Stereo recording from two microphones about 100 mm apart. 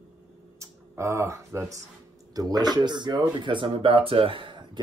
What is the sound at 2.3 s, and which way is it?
Speech, 40° right (ahead or behind).